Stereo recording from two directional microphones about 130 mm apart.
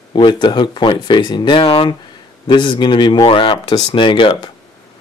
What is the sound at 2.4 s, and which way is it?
Speech, 35° left (ahead or behind).